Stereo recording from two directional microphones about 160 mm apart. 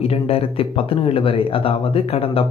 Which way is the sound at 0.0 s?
35° left (ahead or behind).